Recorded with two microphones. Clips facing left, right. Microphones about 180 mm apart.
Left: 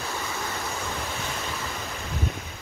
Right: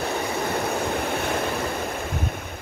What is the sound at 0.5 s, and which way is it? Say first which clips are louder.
Waves: right 8 dB; 60° right (ahead or behind).